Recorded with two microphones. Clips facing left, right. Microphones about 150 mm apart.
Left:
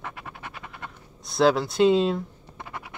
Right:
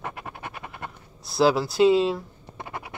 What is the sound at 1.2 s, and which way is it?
Speech, centre (ahead or behind).